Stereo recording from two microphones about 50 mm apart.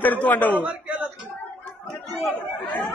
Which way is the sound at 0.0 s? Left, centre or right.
Left.